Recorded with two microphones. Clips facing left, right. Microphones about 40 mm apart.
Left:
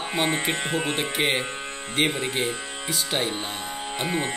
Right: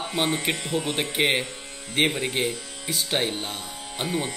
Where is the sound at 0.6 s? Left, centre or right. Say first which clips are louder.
Left 1 dB; left.